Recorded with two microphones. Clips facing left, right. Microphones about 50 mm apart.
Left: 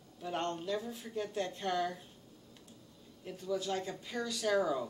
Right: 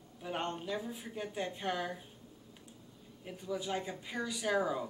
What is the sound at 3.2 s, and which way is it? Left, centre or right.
Speech, centre.